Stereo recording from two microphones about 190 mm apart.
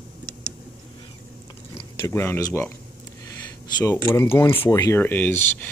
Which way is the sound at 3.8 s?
15° left (ahead or behind).